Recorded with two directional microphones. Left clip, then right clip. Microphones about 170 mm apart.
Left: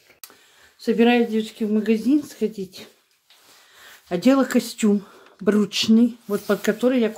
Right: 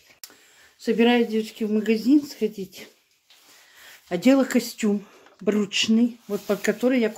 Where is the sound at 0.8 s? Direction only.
10° right (ahead or behind).